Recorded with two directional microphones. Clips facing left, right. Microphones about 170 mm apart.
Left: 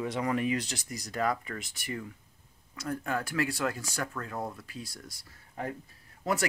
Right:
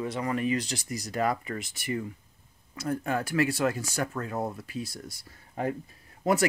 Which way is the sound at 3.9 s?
20° right (ahead or behind).